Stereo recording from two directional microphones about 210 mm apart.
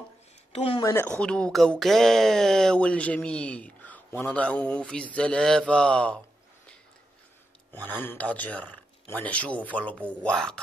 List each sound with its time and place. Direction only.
0.5 s speech: 25° left (ahead or behind)
1.2 s speech: 5° left (ahead or behind)
7.7 s a man's voice: 10° left (ahead or behind)